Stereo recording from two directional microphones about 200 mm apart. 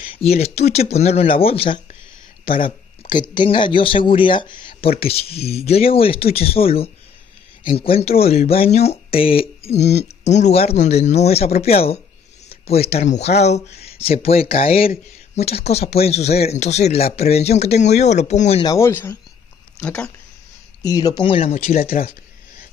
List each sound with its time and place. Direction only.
0.0 s speech: 30° left (ahead or behind)
18.6 s speech: 15° left (ahead or behind)
20.8 s speech: 20° left (ahead or behind)
21.6 s speech: 45° left (ahead or behind)